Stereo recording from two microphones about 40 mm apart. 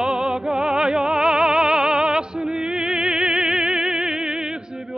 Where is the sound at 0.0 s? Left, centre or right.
Centre.